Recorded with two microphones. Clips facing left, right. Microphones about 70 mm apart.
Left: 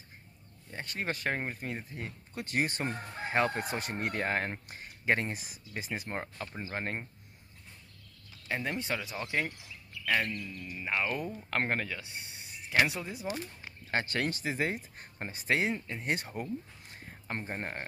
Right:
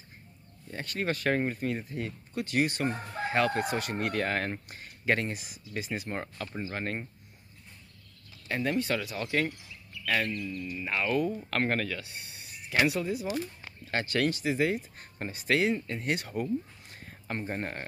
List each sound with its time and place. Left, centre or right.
0.7 s speech: centre
8.5 s speech: centre
10.4 s speech: left
10.9 s speech: centre; by 14.8 s left
15.0 s speech: left
17.5 s speech: centre